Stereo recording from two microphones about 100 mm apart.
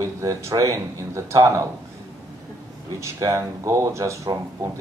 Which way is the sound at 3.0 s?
30° right (ahead or behind).